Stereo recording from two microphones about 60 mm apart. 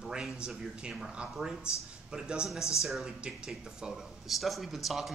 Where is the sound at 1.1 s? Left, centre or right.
Centre.